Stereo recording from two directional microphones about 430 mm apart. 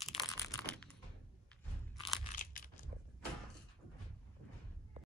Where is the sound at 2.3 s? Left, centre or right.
Centre.